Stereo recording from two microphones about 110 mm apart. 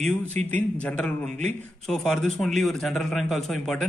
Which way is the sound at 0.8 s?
10° left (ahead or behind).